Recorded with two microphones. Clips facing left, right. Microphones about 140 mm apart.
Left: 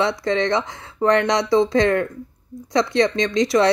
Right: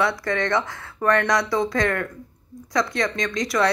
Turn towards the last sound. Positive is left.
turn(degrees=25)  # may be behind; listen again after turning